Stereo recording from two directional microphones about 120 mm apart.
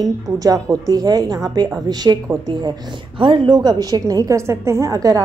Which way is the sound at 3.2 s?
40° right (ahead or behind).